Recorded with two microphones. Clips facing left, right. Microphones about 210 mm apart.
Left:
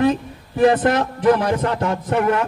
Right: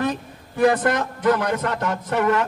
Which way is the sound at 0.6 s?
25° left (ahead or behind).